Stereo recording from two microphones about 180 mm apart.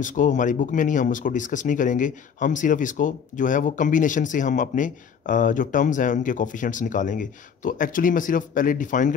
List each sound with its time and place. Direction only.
0.0 s speech: 45° left (ahead or behind)